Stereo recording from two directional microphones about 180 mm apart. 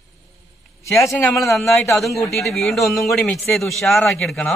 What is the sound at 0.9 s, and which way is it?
Speech, 15° left (ahead or behind).